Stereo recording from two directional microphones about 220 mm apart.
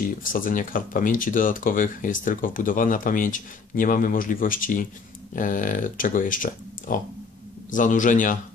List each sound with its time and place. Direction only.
0.2 s speech: 40° left (ahead or behind)